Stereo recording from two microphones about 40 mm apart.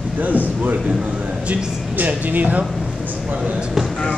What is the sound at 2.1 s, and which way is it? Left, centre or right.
Speech, right.